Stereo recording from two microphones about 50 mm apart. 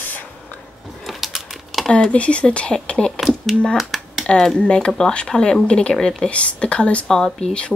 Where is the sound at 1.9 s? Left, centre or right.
Left.